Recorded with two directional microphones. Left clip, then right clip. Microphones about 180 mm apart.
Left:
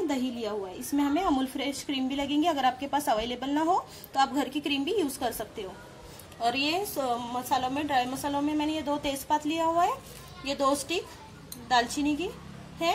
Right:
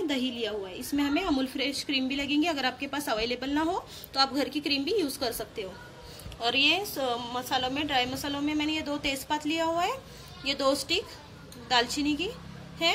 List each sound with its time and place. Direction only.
0.1 s a woman's voice: 35° left (ahead or behind)